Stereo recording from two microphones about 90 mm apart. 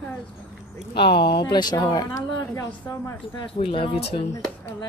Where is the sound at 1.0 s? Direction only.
60° left (ahead or behind).